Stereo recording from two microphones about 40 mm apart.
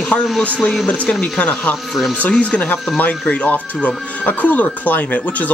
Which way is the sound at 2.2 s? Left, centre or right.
Left.